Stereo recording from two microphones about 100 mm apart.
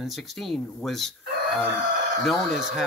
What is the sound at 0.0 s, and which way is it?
Speech, centre (ahead or behind).